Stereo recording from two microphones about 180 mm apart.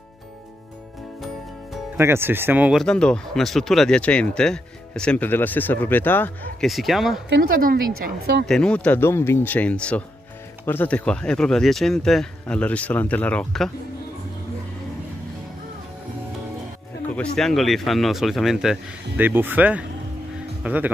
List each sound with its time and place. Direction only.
2.0 s speech: 15° right (ahead or behind)
2.8 s speech: 5° left (ahead or behind)
7.2 s speech: 60° right (ahead or behind)
8.5 s speech: 5° left (ahead or behind)
17.1 s speech: 5° left (ahead or behind)